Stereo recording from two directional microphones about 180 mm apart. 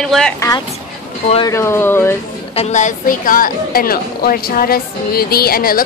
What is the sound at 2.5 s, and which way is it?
A woman's voice, 45° left (ahead or behind).